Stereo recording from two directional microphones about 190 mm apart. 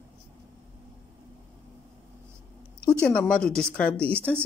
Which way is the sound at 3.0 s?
5° left (ahead or behind).